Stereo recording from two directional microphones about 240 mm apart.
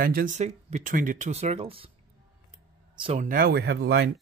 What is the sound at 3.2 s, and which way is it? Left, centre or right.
Speech, right.